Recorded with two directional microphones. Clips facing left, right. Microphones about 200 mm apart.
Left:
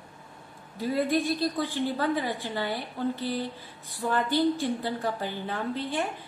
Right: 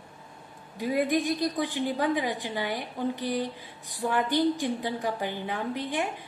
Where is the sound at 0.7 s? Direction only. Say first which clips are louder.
Even; 15° right (ahead or behind).